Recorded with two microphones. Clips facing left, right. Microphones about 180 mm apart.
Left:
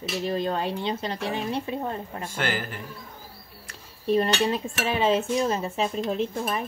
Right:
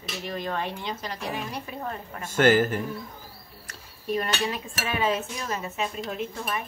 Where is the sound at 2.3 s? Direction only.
45° right (ahead or behind).